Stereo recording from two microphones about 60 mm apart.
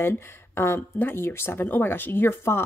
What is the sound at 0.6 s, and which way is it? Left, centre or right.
Speech, left.